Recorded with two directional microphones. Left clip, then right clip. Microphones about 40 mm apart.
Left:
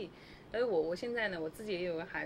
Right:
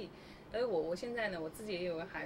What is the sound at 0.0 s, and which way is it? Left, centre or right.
A woman's voice, left.